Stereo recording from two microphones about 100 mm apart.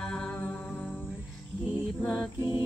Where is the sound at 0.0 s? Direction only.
5° left (ahead or behind).